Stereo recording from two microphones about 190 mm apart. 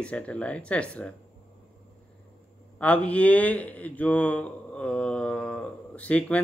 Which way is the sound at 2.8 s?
5° left (ahead or behind).